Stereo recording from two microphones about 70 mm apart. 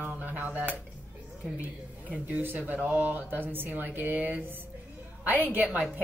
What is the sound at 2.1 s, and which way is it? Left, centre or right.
Speech, right.